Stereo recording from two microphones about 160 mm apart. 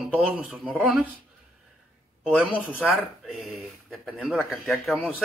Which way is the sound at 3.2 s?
Centre (ahead or behind).